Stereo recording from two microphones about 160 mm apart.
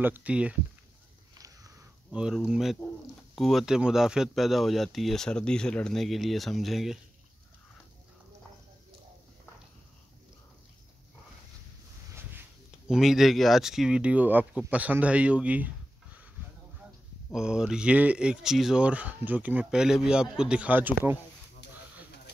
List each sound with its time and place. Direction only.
0.0 s speech: 10° right (ahead or behind)
1.3 s a sound: 20° right (ahead or behind)
2.0 s speech: 5° right (ahead or behind)
12.1 s a sound: 15° right (ahead or behind)
12.8 s speech: 5° right (ahead or behind)
17.3 s speech: 5° right (ahead or behind)